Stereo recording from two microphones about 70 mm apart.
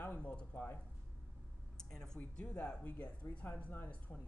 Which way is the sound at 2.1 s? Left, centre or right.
Centre.